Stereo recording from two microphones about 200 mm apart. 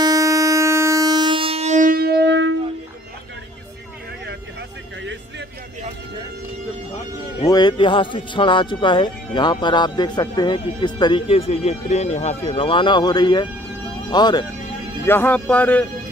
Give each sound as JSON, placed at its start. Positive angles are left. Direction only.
{"t": 0.0, "sound": "a sound", "side_deg": -15}
{"t": 7.4, "sound": "speech", "side_deg": 20}
{"t": 15.0, "sound": "speech", "side_deg": 10}